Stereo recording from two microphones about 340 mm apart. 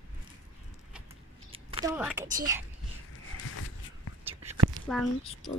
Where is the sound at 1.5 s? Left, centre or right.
Centre.